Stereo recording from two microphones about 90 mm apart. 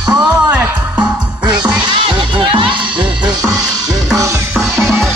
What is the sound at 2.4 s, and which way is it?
Music, 65° right (ahead or behind).